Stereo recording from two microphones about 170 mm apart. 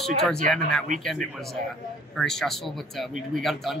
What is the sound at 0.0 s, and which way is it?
Speech, centre (ahead or behind).